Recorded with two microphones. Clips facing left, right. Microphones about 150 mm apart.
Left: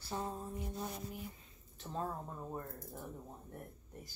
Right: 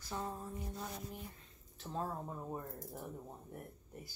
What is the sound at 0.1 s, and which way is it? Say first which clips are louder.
Mantra: left 1 dB; 20° left (ahead or behind).